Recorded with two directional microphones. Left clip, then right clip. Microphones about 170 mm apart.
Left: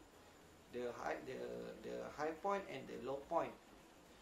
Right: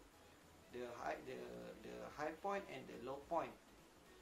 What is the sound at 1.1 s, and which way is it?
Speech, 15° right (ahead or behind).